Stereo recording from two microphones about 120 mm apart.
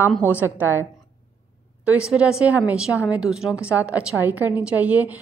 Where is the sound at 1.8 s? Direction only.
10° right (ahead or behind).